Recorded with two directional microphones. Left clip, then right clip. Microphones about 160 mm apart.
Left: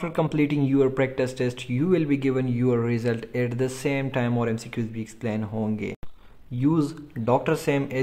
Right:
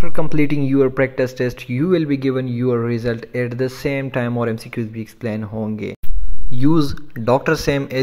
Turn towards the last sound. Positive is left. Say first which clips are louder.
# right 6 dB
turn(degrees=-20)  # may be behind; listen again after turning